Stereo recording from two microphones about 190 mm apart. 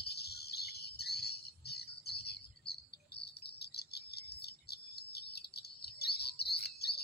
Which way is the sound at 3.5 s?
60° left (ahead or behind).